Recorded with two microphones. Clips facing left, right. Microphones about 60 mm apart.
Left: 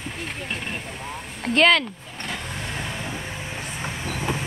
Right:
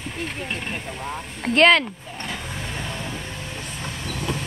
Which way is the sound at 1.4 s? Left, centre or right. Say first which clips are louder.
Right 2 dB; centre.